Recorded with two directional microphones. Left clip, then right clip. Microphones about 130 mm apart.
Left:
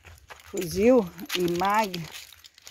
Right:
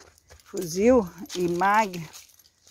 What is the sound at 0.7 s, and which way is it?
Speech, 5° right (ahead or behind).